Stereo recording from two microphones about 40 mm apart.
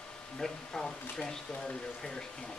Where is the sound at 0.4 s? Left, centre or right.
Centre.